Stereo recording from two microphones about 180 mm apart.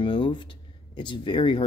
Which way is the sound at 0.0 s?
25° left (ahead or behind).